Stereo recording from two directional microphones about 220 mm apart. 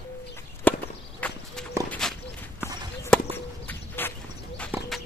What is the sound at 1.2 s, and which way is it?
Horse, 5° left (ahead or behind).